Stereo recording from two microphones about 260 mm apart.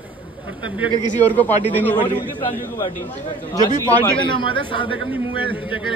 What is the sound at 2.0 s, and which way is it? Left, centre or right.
Speech, centre.